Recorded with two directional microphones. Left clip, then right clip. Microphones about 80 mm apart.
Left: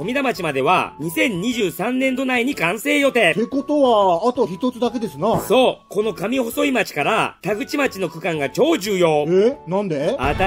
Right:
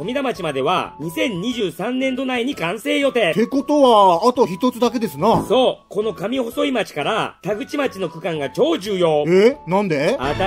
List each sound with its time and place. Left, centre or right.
0.0 s a man's voice: left
3.3 s speech: right
5.5 s a man's voice: left
9.2 s speech: right